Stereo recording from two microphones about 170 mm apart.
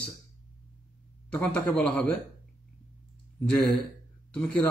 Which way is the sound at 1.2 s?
5° left (ahead or behind).